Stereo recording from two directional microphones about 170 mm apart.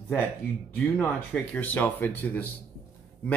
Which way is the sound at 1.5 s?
10° left (ahead or behind).